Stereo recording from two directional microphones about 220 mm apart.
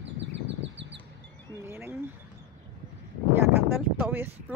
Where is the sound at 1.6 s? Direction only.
10° right (ahead or behind).